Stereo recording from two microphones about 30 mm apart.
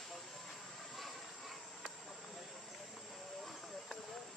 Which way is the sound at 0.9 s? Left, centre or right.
Centre.